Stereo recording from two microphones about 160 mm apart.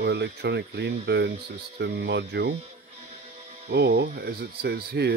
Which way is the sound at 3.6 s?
90° right.